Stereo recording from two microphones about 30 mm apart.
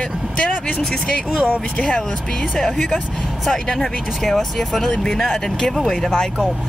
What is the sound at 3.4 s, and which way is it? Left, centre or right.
Speech, centre.